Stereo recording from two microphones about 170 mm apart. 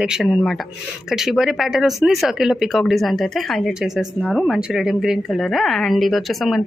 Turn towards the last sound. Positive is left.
turn(degrees=0)  # may be behind; listen again after turning